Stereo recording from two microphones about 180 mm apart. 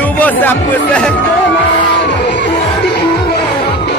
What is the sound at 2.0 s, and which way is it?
Music, 80° left.